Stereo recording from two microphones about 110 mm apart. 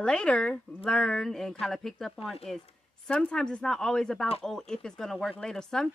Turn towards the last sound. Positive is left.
turn(degrees=5)  # may be behind; listen again after turning